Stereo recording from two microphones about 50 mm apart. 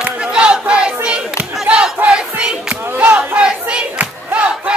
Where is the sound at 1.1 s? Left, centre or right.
Right.